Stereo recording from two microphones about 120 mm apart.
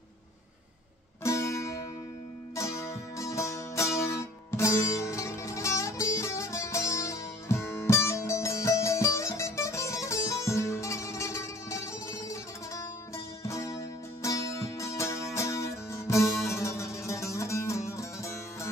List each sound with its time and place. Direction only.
1.2 s music: 25° left (ahead or behind)